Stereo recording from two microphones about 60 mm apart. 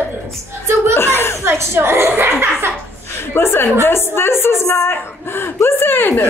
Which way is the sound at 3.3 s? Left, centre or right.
Left.